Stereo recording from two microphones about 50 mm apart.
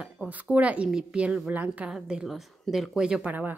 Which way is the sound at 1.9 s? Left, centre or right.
Centre.